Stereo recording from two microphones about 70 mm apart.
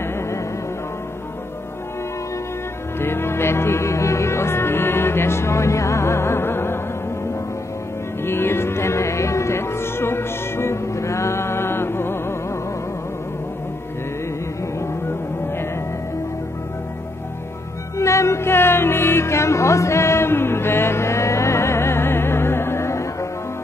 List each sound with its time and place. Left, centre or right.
3.0 s music: left
8.2 s music: left
17.9 s music: left